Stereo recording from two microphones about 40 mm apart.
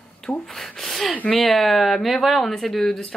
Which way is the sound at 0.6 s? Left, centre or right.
Centre.